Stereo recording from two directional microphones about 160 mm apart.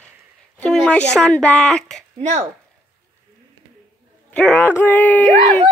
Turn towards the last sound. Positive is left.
turn(degrees=-40)  # may be behind; listen again after turning